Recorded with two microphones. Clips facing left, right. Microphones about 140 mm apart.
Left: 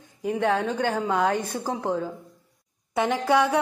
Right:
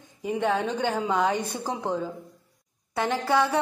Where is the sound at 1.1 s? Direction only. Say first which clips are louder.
Left 1 dB; centre (ahead or behind).